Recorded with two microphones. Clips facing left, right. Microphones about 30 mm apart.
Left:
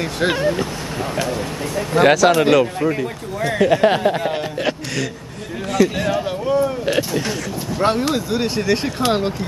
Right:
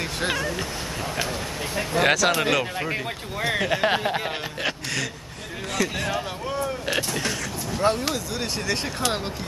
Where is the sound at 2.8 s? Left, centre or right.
Right.